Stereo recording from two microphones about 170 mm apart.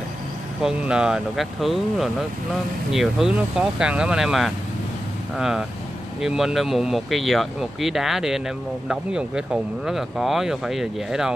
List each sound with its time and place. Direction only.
0.6 s speech: 5° right (ahead or behind)